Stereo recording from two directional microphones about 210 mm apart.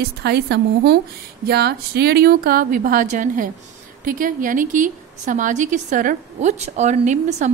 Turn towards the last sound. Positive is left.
turn(degrees=-35)  # may be behind; listen again after turning